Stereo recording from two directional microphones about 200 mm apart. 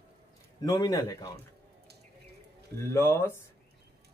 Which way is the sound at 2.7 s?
15° left (ahead or behind).